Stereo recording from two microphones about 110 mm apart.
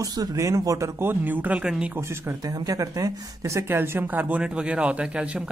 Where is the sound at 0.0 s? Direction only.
35° right (ahead or behind); by 2.0 s 10° right (ahead or behind).